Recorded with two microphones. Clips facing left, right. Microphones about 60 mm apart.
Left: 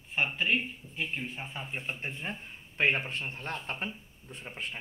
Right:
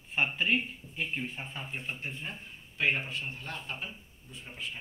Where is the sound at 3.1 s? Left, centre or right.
Left.